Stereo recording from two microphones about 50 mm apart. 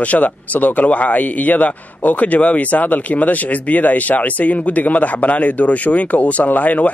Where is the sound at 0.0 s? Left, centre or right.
Left.